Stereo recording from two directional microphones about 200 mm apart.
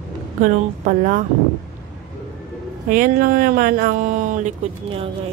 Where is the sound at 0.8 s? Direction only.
40° right (ahead or behind).